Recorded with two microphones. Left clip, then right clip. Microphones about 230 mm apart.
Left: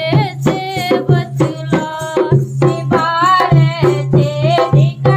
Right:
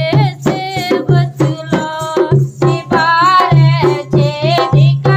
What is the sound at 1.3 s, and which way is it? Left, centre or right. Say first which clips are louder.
Music: even; right.